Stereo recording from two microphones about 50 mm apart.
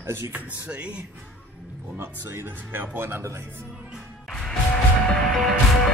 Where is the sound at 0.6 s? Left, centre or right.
Right.